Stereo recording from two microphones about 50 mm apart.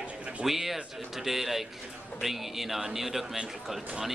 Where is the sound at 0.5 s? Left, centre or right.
Centre.